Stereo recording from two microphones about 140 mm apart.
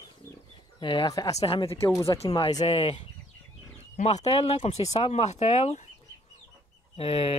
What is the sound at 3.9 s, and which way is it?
Speech, 50° left (ahead or behind).